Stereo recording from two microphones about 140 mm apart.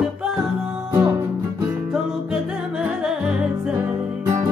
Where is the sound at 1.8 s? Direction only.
5° right (ahead or behind).